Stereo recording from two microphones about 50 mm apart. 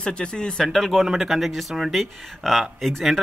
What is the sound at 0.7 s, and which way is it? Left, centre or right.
Speech, centre.